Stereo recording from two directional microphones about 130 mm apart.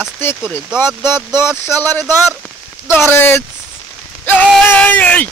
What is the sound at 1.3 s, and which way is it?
Speech, 20° left (ahead or behind).